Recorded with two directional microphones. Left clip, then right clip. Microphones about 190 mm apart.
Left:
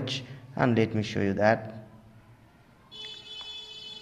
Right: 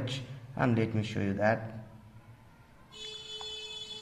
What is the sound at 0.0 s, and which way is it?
A man's voice, 20° left (ahead or behind).